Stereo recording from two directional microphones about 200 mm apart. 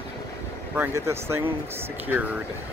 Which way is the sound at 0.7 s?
10° right (ahead or behind).